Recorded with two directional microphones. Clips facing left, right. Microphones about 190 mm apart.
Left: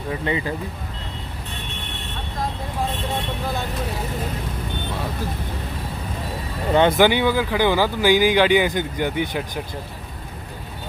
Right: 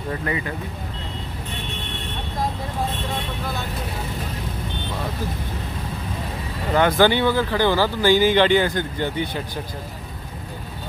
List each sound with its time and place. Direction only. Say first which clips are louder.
0.2 s speech: left 2 dB; 25° left (ahead or behind)
6.7 s speech: left 1 dB; 25° left (ahead or behind)
7.1 s speech: even; 10° left (ahead or behind)